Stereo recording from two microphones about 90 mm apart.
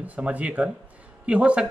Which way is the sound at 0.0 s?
15° right (ahead or behind).